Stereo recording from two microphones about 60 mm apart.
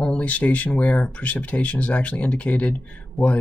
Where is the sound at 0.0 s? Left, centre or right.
Left.